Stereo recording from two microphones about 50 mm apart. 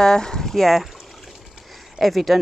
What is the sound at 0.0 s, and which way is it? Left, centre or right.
Speech, centre.